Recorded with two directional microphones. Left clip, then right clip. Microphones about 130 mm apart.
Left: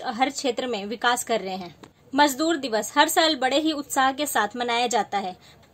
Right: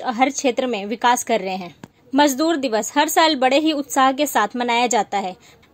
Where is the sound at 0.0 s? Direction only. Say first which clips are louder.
Right 6 dB; 25° right (ahead or behind).